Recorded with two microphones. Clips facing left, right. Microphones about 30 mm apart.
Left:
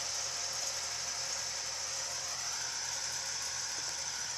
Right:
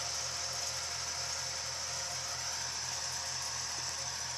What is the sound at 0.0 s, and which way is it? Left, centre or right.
Vehicle, centre.